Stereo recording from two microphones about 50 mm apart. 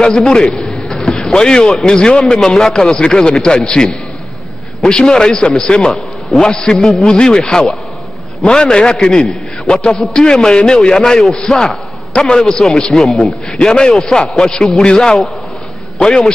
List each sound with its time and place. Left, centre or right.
0.3 s a sound: centre
1.9 s a man's voice: centre
5.0 s a man's voice: centre
7.1 s a man's voice: centre
12.1 s a man's voice: centre
12.9 s a man's voice: centre
13.5 s a man's voice: centre